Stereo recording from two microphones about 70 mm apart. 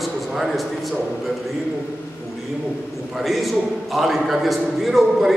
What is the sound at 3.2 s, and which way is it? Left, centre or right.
A man's voice, centre.